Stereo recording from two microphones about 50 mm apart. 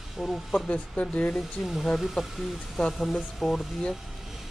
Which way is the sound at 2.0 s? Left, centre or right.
Centre.